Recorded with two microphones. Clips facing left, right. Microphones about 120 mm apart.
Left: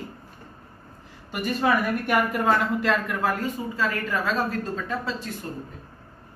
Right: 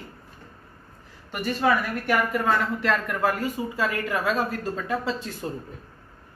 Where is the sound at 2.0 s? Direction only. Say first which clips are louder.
Left 1 dB; 15° left (ahead or behind).